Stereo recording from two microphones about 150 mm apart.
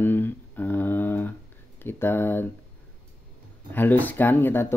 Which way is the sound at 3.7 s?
10° left (ahead or behind).